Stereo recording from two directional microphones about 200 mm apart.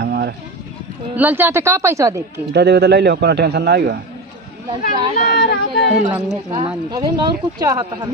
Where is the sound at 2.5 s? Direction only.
55° right (ahead or behind).